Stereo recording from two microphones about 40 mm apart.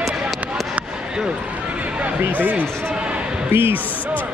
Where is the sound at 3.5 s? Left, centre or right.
Right.